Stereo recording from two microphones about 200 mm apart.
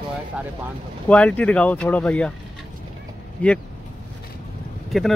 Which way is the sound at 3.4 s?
5° left (ahead or behind).